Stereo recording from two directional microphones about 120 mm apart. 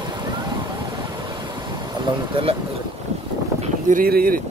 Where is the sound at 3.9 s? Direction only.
90° right.